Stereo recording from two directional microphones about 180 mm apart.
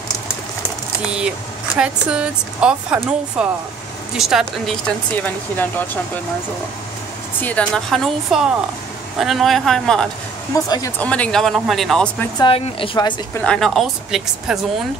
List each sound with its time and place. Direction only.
1.8 s a woman's voice: 5° right (ahead or behind); by 5.9 s 10° left (ahead or behind)
7.4 s a woman's voice: 5° left (ahead or behind)
10.5 s a woman's voice: 20° left (ahead or behind)
11.0 s a woman's voice: 5° left (ahead or behind)
12.4 s a woman's voice: 30° left (ahead or behind)
13.3 s a woman's voice: 5° left (ahead or behind)